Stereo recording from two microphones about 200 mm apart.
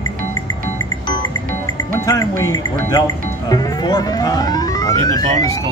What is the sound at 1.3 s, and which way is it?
Speech, 15° left (ahead or behind).